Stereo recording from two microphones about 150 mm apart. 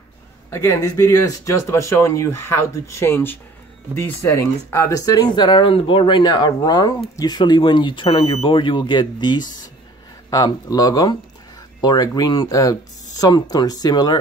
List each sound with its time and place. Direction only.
0.5 s speech: 15° left (ahead or behind)